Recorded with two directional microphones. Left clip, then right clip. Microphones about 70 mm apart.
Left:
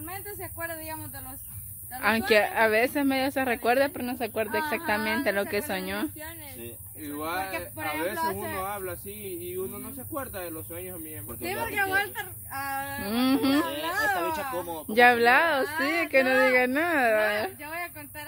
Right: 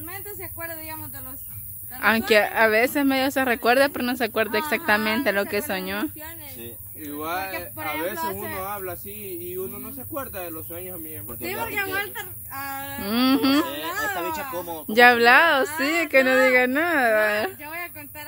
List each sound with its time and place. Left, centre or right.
0.1 s speech: centre
2.0 s a woman's voice: right
4.8 s speech: right
5.2 s a woman's voice: right
5.7 s speech: right
8.2 s speech: centre
8.6 s speech: right
11.4 s speech: centre; by 12.8 s left
13.0 s a woman's voice: right
13.8 s speech: centre
14.6 s speech: right
16.5 s speech: right
17.2 s speech: right
17.6 s speech: centre